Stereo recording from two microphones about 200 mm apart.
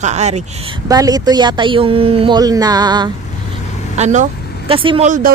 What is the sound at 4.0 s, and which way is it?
Speech, 35° right (ahead or behind).